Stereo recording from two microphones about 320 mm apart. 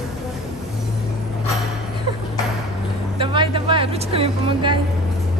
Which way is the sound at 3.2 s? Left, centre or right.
Centre.